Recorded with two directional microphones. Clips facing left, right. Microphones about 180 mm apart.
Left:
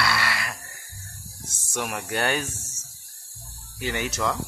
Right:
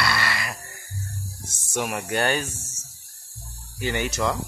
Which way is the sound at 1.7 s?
10° right (ahead or behind).